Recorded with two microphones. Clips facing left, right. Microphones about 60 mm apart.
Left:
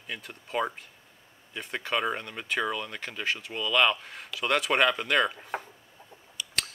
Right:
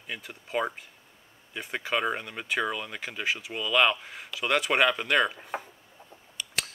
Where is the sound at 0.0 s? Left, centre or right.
Centre.